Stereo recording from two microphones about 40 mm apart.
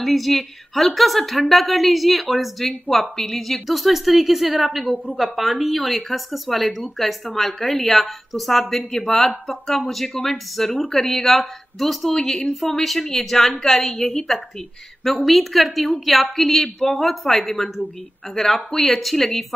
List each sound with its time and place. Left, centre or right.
0.0 s a woman's voice: centre
12.1 s speech: centre
12.6 s a woman's voice: centre